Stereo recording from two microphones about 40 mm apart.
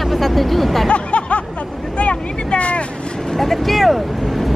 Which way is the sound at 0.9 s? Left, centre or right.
Left.